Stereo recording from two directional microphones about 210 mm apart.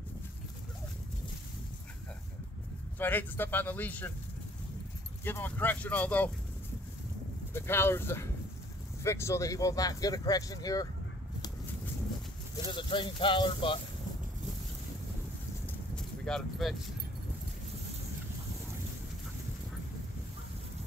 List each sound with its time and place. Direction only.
3.0 s speech: 10° left (ahead or behind)
5.2 s speech: 10° left (ahead or behind)
7.5 s speech: 10° left (ahead or behind)
12.6 s speech: 20° left (ahead or behind)
15.6 s a sound: 5° left (ahead or behind)